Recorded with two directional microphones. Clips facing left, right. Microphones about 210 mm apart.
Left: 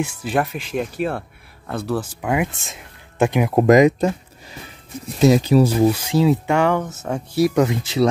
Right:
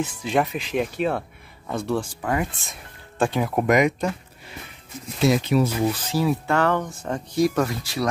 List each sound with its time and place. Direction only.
0.0 s speech: 5° left (ahead or behind)
3.5 s speech: 35° left (ahead or behind)
5.2 s speech: 35° left (ahead or behind)
5.9 s speech: 10° left (ahead or behind)
7.6 s speech: 20° left (ahead or behind)